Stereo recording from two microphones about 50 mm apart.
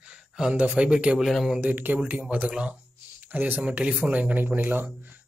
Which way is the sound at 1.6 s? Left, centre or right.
Right.